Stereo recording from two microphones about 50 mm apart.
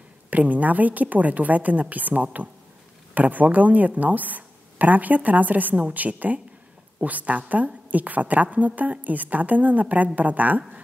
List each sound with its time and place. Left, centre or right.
0.3 s speech: right